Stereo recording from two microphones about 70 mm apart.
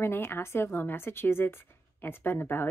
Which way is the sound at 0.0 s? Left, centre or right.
Left.